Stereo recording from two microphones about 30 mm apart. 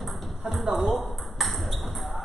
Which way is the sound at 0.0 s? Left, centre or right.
Centre.